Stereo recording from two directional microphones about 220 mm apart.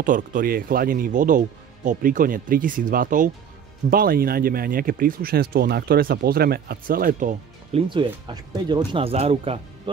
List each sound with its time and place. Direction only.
0.0 s speech: 35° right (ahead or behind)
7.9 s speech: 20° right (ahead or behind)